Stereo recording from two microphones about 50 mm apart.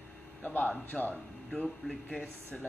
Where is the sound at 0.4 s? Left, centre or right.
Left.